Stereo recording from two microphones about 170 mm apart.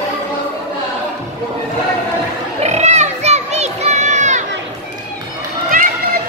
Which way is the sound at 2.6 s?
40° right (ahead or behind).